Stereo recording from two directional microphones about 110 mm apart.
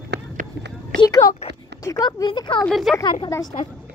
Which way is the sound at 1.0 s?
40° left (ahead or behind).